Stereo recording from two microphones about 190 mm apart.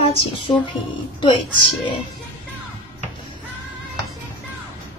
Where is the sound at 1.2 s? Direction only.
25° left (ahead or behind).